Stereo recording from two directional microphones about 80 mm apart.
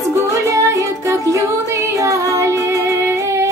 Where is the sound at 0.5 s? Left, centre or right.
Right.